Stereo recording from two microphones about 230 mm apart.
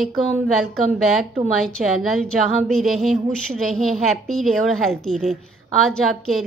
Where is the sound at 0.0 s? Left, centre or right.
Centre.